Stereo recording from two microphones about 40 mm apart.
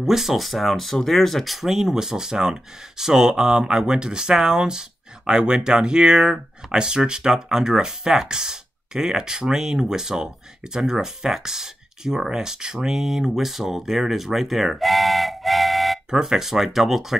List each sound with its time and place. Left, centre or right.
0.0 s speech: centre
16.1 s speech: centre